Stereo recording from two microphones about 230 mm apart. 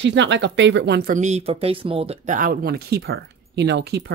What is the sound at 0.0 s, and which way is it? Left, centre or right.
Speech, right.